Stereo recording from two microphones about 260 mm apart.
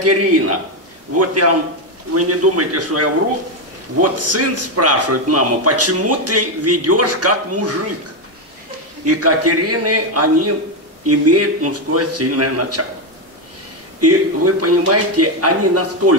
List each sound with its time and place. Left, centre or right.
0.0 s speech: right
9.0 s speech: right
14.0 s speech: right